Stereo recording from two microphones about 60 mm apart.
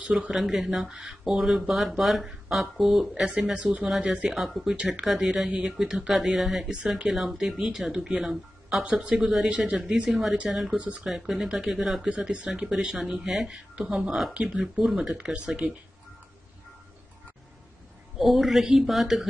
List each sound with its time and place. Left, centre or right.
0.0 s speech: centre
0.3 s speech: centre
3.5 s speech: centre
4.3 s speech: centre
10.8 s speech: right
11.2 s speech: centre
12.1 s speech: centre
12.7 s speech: centre
14.9 s speech: centre
15.3 s speech: centre
18.2 s speech: centre